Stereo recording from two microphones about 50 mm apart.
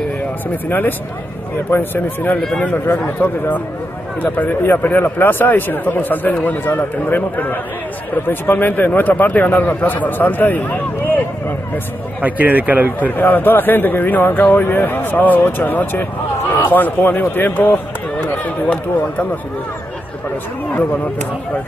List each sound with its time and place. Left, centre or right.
0.7 s a man's voice: left
12.2 s speech: right
13.1 s speech: left